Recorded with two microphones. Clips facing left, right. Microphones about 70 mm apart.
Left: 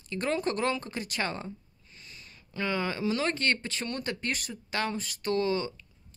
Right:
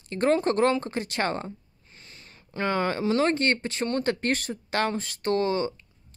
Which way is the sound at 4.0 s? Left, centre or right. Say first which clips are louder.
Right 7 dB; right.